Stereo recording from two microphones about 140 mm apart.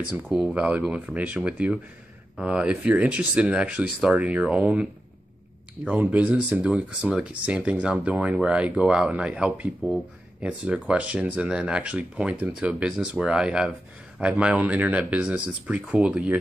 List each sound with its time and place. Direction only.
0.1 s speech: centre (ahead or behind)
5.9 s speech: 10° right (ahead or behind)